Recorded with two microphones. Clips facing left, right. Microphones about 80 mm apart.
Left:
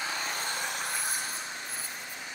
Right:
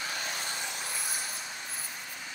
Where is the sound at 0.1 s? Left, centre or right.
Left.